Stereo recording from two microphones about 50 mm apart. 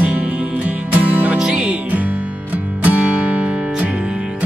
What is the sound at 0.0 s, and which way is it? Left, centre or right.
Music, right.